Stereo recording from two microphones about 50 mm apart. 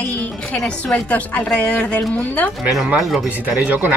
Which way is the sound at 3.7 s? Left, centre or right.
Right.